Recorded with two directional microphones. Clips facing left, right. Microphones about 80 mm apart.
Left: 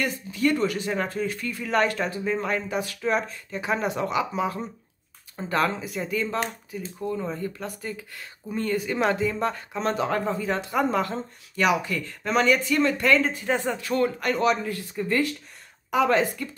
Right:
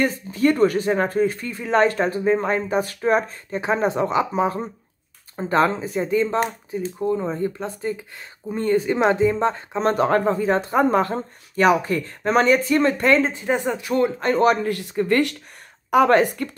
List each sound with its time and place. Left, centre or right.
0.0 s speech: right
9.8 s speech: right
14.3 s speech: right
15.9 s a woman's voice: right